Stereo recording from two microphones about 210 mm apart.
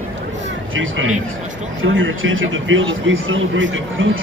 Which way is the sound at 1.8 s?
65° right (ahead or behind).